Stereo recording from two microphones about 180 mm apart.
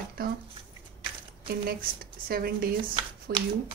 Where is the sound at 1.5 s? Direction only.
55° right (ahead or behind).